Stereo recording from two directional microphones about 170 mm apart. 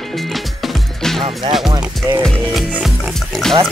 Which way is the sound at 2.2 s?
Centre (ahead or behind).